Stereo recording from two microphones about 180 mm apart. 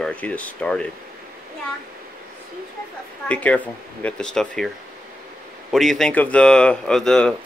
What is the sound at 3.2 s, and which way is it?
Speech, 5° left (ahead or behind).